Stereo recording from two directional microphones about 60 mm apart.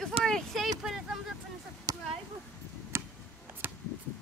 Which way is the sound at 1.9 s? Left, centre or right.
Right.